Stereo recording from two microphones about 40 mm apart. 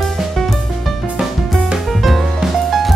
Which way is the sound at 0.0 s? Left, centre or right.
Centre.